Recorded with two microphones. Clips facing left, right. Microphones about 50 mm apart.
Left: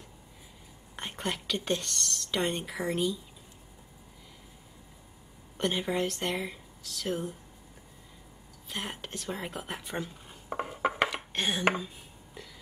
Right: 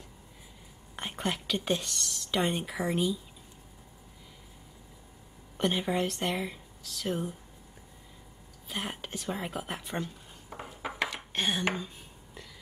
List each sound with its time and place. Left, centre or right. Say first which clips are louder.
0.9 s speech: right 1 dB; centre
5.6 s speech: right 1 dB; centre
8.6 s speech: right 1 dB; centre
10.5 s ratchet: left 9 dB; left
11.1 s dishes: even; centre
12.4 s burping: left 2 dB; centre